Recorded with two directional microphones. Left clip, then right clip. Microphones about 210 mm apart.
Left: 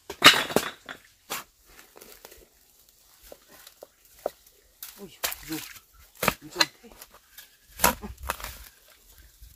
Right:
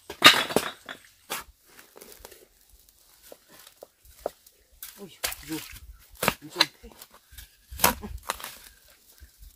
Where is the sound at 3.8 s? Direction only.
10° left (ahead or behind).